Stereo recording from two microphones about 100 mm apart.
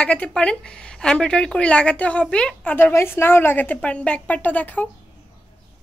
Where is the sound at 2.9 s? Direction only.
25° left (ahead or behind).